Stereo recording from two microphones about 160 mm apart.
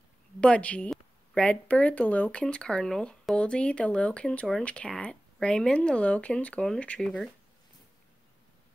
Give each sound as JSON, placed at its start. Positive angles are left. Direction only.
{"t": 0.4, "sound": "speech", "side_deg": 5}